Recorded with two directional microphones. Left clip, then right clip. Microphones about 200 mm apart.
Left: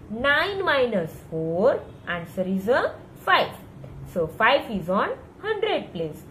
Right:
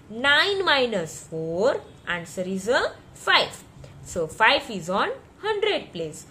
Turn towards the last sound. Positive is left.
turn(degrees=-50)  # may be behind; listen again after turning